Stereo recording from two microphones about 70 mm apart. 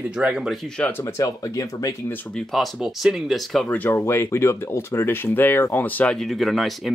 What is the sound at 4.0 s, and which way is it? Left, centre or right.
Speech, left.